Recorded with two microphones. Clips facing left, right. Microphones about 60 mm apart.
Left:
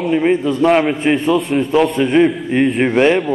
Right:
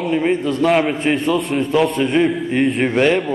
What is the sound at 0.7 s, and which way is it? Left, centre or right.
Speech, centre.